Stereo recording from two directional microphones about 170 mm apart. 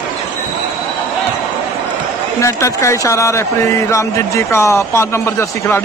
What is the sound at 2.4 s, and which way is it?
Speech, 15° left (ahead or behind).